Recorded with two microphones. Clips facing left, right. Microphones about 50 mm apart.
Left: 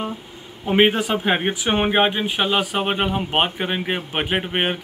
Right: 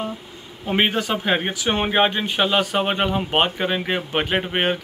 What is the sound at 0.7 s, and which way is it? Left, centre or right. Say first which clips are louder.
Speech: left 3 dB; centre.